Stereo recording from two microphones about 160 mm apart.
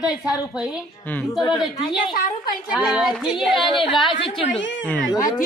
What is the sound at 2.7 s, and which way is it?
Child singing, 5° right (ahead or behind).